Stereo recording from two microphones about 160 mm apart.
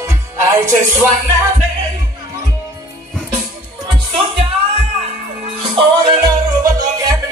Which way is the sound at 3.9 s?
35° right (ahead or behind).